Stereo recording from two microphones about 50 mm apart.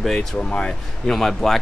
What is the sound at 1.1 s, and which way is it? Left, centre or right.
Speech, centre.